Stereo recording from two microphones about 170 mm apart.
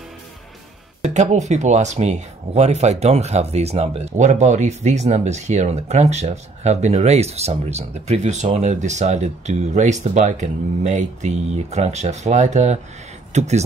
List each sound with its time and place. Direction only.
1.1 s speech: 40° right (ahead or behind)